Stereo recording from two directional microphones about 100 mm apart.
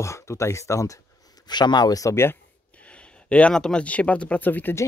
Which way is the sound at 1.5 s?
45° left (ahead or behind).